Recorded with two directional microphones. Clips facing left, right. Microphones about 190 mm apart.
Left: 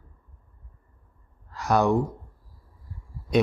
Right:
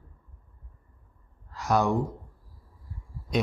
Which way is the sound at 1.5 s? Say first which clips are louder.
Left 3 dB; 60° left (ahead or behind).